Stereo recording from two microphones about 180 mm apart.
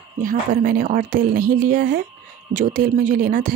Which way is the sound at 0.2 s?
50° right (ahead or behind).